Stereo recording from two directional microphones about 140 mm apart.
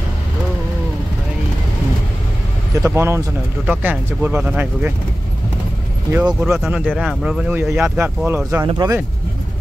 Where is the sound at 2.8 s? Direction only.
20° right (ahead or behind).